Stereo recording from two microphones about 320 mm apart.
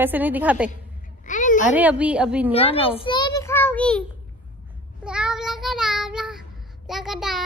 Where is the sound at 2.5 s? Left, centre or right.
Centre.